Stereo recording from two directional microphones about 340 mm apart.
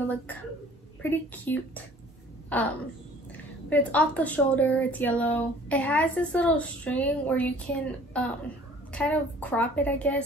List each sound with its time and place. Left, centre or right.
1.3 s a woman's voice: centre